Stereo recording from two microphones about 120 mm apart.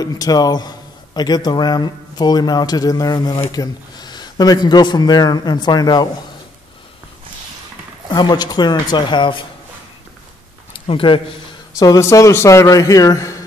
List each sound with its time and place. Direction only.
0.0 s a man's voice: 35° left (ahead or behind)
8.1 s a man's voice: 35° left (ahead or behind)
10.9 s speech: 45° left (ahead or behind)
11.8 s a man's voice: 25° left (ahead or behind)